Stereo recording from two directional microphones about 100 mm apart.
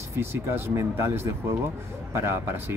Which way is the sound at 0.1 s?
25° right (ahead or behind).